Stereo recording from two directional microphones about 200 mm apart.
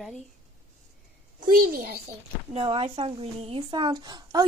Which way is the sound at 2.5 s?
25° right (ahead or behind).